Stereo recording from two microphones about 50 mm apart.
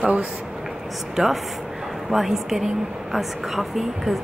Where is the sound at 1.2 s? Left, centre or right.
Centre.